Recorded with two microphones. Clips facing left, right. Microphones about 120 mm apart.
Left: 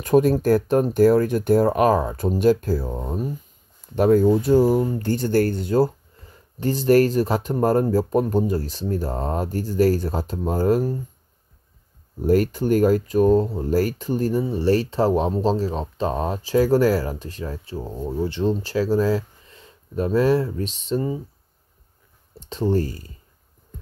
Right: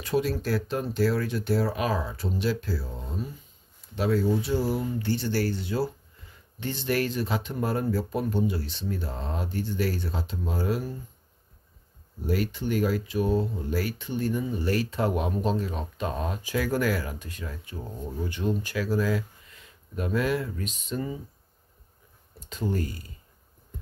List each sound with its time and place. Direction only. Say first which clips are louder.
0.0 s speech: left 10 dB; 45° left (ahead or behind)
12.2 s speech: left 10 dB; 45° left (ahead or behind)
22.5 s speech: left 8 dB; 35° left (ahead or behind)